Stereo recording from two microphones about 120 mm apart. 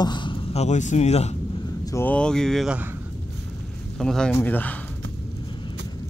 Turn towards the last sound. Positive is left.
turn(degrees=15)  # may be behind; listen again after turning